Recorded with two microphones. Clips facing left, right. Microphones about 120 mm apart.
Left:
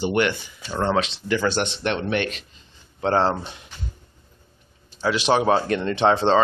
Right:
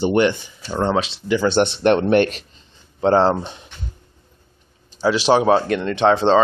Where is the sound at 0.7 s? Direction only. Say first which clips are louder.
Right 2 dB; 10° right (ahead or behind).